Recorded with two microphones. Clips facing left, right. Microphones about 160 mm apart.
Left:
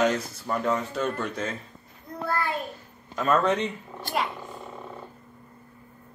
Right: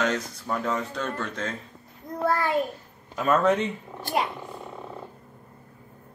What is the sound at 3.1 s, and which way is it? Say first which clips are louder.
Speech: right 1 dB; 5° right (ahead or behind).